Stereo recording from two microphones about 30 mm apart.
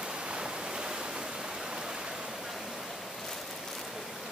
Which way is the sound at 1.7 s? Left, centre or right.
Right.